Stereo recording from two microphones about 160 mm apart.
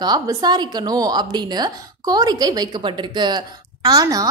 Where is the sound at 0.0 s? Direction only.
25° right (ahead or behind).